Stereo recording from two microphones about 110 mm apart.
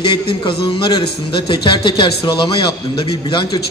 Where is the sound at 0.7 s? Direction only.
50° left (ahead or behind).